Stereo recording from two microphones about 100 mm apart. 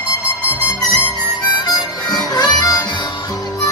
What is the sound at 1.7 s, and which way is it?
Harmonica, 45° left (ahead or behind).